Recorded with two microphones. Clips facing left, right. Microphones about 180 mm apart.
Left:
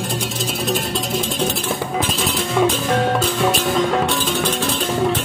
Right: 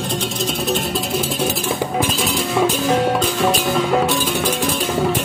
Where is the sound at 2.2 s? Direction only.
5° right (ahead or behind).